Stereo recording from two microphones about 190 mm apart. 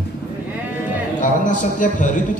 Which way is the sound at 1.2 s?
40° left (ahead or behind).